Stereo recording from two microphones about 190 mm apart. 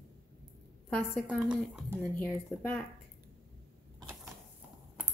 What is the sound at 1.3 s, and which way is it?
Speech, 5° right (ahead or behind).